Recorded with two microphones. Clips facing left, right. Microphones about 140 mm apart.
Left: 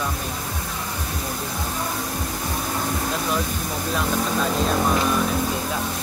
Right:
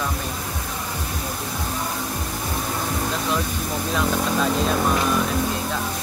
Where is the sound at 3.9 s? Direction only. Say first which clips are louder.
Right 1 dB; centre (ahead or behind).